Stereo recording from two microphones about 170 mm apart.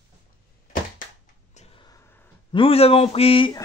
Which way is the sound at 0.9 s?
45° left (ahead or behind).